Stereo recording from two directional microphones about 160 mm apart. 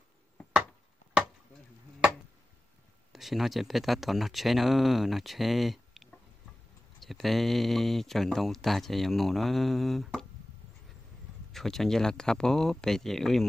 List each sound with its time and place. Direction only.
3.1 s speech: centre (ahead or behind)
11.5 s speech: centre (ahead or behind)